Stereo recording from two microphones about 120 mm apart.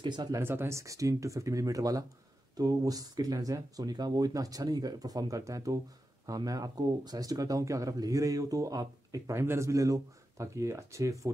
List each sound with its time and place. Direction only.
0.0 s speech: 35° right (ahead or behind)
0.4 s speech: 20° right (ahead or behind)